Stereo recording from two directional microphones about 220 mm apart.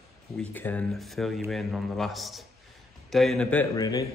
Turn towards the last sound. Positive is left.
turn(degrees=20)  # may be behind; listen again after turning